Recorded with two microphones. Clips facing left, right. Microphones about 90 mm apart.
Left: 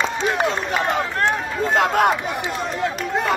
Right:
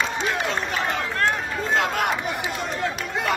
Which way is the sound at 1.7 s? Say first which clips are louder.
Left 6 dB; 45° left (ahead or behind).